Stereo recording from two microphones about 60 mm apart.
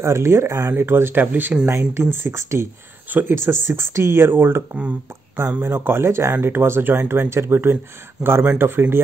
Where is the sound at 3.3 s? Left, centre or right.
Right.